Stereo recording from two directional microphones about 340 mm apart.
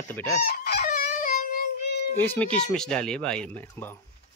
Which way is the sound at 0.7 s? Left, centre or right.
Left.